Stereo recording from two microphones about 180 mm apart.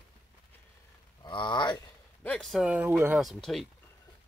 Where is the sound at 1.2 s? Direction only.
25° left (ahead or behind).